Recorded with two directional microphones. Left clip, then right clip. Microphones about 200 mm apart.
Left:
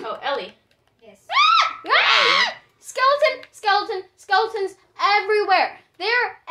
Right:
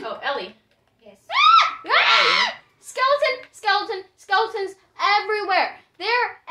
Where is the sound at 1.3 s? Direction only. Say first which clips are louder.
Right 1 dB; 20° left (ahead or behind).